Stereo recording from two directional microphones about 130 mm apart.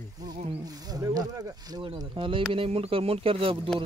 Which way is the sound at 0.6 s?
30° right (ahead or behind).